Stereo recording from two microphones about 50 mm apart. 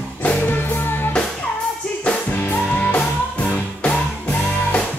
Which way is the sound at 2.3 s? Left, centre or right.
Left.